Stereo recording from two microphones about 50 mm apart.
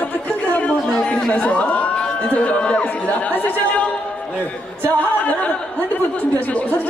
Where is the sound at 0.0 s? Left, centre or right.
Left.